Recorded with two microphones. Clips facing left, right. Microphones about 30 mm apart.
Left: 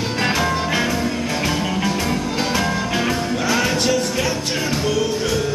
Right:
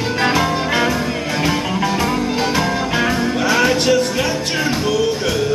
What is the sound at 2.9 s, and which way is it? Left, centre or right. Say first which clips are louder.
Music: right 3 dB; centre.